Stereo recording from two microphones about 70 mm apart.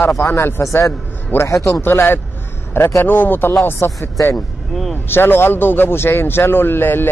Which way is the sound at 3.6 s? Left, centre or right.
Left.